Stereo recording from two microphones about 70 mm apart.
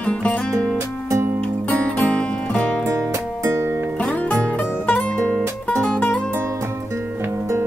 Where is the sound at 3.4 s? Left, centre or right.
Right.